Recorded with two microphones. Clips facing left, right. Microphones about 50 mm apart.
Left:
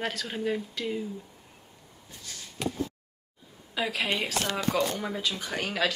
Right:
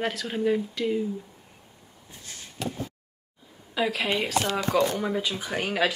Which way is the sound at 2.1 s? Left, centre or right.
Right.